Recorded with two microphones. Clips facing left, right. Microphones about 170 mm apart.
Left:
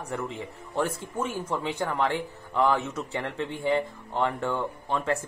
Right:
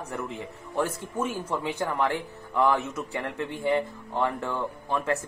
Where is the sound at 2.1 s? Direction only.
20° left (ahead or behind).